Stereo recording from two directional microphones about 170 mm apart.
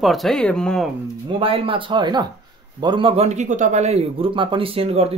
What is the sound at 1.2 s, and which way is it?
Speech, 30° right (ahead or behind).